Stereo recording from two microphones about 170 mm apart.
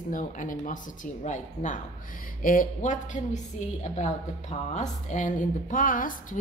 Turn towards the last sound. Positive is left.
turn(degrees=55)  # may be behind; listen again after turning